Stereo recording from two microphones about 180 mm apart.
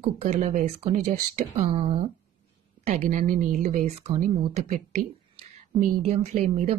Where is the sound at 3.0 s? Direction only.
45° right (ahead or behind).